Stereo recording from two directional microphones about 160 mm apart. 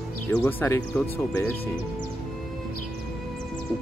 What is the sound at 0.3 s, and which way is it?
Speech, 10° left (ahead or behind).